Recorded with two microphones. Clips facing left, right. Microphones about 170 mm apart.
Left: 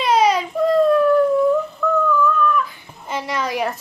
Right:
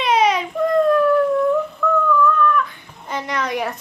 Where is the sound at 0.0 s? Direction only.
Centre (ahead or behind).